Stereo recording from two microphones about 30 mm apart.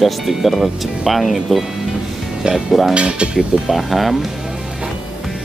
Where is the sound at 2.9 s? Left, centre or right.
Right.